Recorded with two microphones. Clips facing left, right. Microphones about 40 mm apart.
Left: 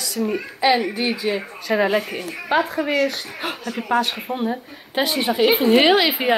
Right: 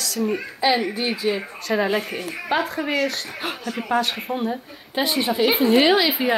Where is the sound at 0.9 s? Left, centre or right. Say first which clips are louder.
Left 1 dB; left.